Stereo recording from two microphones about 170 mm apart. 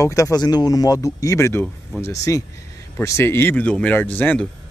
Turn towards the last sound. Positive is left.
turn(degrees=10)  # may be behind; listen again after turning